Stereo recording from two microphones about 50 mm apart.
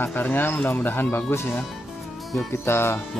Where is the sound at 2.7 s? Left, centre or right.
Left.